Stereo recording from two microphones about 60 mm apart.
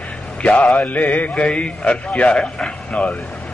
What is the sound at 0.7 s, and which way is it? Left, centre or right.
A man's voice, left.